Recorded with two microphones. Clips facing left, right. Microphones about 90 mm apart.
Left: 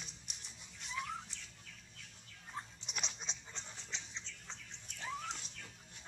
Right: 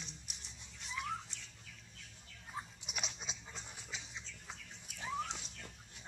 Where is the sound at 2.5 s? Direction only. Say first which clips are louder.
Right 1 dB; 5° right (ahead or behind).